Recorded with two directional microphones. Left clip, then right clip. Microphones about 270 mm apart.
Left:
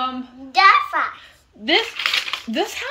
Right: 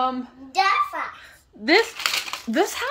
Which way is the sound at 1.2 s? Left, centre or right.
Centre.